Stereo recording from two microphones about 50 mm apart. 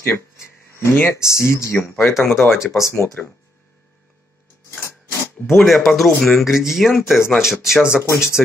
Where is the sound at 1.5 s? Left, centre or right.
Left.